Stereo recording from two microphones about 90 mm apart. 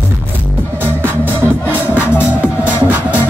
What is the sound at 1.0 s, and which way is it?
Music, 25° right (ahead or behind).